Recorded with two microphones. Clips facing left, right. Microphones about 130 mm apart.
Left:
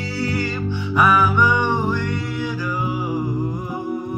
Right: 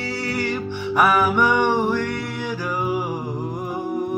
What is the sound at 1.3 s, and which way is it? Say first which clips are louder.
Music: right 1 dB; 70° right (ahead or behind).